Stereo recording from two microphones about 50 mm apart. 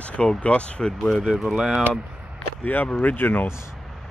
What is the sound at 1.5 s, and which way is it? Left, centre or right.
Speech, centre.